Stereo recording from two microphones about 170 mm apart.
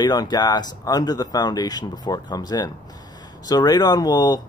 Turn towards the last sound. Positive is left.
turn(degrees=25)  # may be behind; listen again after turning